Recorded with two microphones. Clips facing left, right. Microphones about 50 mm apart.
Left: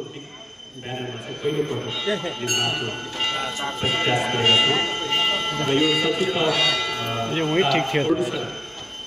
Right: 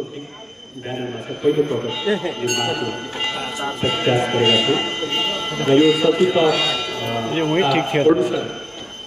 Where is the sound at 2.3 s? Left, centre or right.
Centre.